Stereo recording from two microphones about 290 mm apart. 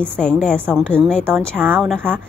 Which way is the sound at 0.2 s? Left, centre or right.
Centre.